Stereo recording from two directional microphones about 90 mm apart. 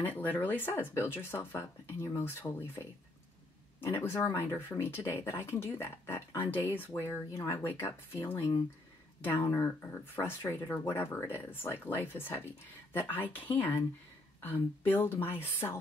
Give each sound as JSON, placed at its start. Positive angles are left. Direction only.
{"t": 0.0, "sound": "speech", "side_deg": 20}